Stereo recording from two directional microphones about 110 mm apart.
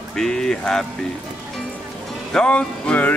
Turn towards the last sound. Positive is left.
turn(degrees=10)  # may be behind; listen again after turning